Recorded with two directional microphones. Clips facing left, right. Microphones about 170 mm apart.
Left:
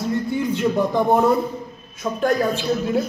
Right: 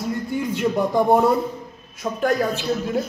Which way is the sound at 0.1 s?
10° right (ahead or behind).